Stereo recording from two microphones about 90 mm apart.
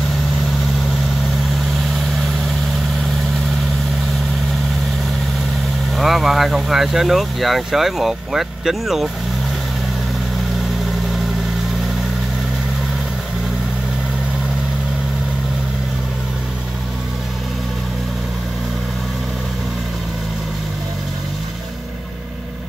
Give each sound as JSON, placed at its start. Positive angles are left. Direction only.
{"t": 5.9, "sound": "speech", "side_deg": 0}